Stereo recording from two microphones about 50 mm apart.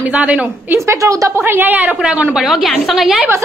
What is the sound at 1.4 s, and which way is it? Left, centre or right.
Speech, right.